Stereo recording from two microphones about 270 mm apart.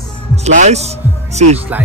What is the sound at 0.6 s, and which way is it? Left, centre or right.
Speech, right.